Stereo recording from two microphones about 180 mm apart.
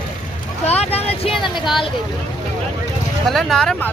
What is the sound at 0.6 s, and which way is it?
Speech, 35° left (ahead or behind).